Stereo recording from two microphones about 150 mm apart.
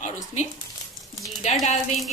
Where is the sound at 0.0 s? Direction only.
50° left (ahead or behind).